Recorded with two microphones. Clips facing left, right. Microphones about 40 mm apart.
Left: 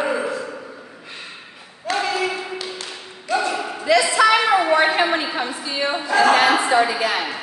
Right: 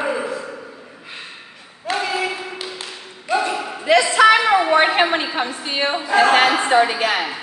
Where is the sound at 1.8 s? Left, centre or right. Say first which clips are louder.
Even; centre.